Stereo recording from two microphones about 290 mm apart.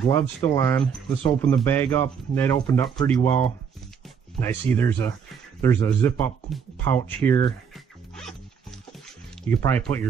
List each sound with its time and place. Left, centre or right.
0.4 s speech: centre
9.5 s speech: centre